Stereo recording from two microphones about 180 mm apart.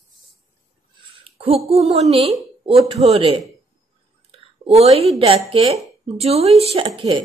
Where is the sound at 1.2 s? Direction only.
35° right (ahead or behind).